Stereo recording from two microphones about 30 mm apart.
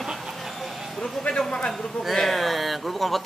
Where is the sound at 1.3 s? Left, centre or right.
Left.